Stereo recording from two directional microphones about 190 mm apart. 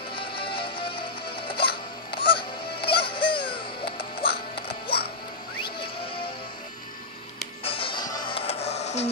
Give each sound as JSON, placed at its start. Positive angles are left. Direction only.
{"t": 0.1, "sound": "music", "side_deg": 25}
{"t": 2.8, "sound": "music", "side_deg": 55}
{"t": 3.1, "sound": "music", "side_deg": 25}
{"t": 7.6, "sound": "music", "side_deg": 30}